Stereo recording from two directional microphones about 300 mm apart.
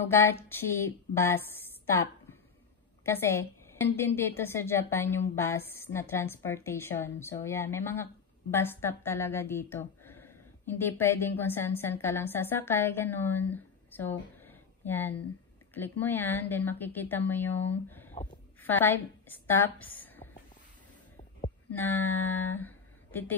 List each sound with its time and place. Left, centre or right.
0.1 s a woman's voice: centre
3.1 s a woman's voice: centre
18.1 s a sound: left
18.6 s a woman's voice: centre
21.7 s speech: centre